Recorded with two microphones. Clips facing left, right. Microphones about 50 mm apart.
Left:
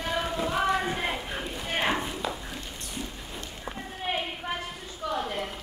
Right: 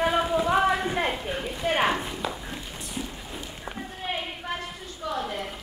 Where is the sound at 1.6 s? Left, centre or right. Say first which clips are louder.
Right 6 dB; right.